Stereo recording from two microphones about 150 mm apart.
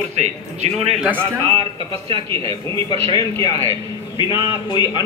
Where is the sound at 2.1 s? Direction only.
35° right (ahead or behind).